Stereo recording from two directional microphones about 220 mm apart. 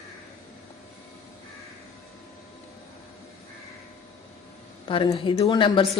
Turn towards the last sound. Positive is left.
turn(degrees=20)  # may be behind; listen again after turning